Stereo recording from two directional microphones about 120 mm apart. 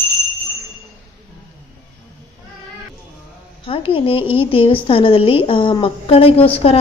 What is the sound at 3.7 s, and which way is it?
A woman's voice, 50° left (ahead or behind).